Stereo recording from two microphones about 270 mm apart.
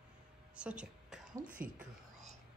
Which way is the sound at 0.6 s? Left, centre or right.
Centre.